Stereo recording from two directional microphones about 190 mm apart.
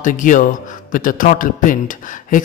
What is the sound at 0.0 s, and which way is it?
Speech, 45° left (ahead or behind).